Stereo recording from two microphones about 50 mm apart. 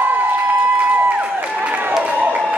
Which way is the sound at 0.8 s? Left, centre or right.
Right.